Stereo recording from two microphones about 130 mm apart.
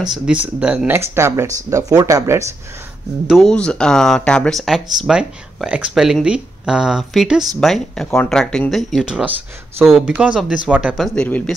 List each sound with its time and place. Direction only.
0.0 s speech: 5° right (ahead or behind); by 2.4 s 25° right (ahead or behind)
3.3 s speech: 5° left (ahead or behind)
11.1 s speech: 10° left (ahead or behind)